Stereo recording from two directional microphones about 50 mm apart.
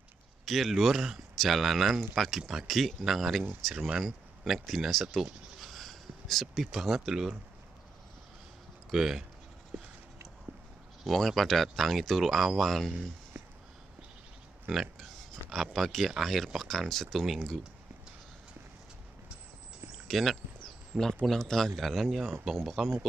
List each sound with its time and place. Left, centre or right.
0.5 s speech: centre
8.9 s speech: centre
11.1 s speech: centre
13.4 s a sound: right
14.7 s a sound: centre
15.5 s speech: centre
20.1 s a man's voice: centre